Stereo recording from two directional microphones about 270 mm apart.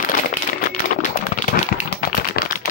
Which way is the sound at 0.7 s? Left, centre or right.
Left.